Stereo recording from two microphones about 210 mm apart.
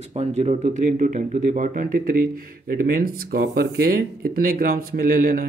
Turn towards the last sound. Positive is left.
turn(degrees=-40)  # may be behind; listen again after turning